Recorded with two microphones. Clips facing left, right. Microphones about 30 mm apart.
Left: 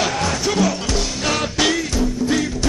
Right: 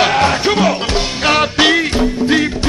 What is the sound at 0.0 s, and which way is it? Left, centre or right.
Music, right.